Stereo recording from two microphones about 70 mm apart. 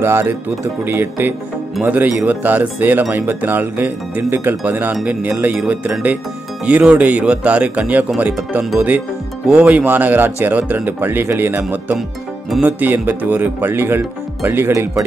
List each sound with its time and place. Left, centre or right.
0.0 s speech: right
6.6 s speech: centre; by 14.7 s right
14.7 s speech: right